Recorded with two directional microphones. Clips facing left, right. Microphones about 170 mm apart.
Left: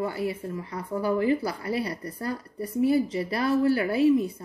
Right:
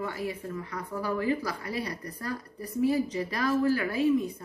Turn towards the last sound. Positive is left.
turn(degrees=30)  # may be behind; listen again after turning